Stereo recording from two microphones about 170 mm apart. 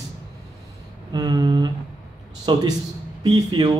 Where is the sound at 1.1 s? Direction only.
25° right (ahead or behind).